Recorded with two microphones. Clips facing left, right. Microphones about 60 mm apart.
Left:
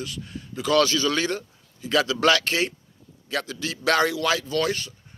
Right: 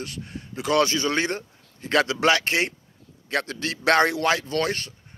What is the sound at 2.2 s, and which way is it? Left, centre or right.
A man's voice, right.